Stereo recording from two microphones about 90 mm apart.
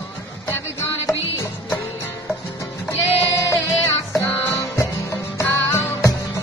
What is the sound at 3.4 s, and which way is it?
Music, 35° left (ahead or behind).